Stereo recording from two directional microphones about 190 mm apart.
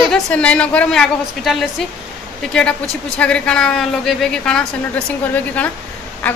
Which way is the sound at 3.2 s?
5° left (ahead or behind).